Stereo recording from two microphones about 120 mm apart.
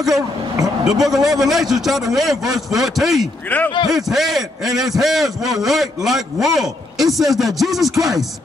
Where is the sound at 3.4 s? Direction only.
15° left (ahead or behind).